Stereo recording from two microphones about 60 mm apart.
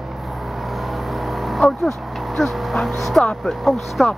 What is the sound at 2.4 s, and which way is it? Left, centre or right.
Speech, centre.